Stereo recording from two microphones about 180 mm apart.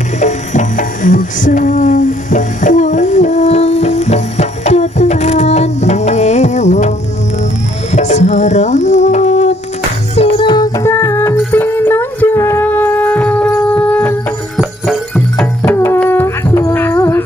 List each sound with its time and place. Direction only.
0.2 s music: 40° left (ahead or behind)
7.9 s music: 40° left (ahead or behind); by 15.4 s centre (ahead or behind)
15.6 s music: 15° left (ahead or behind)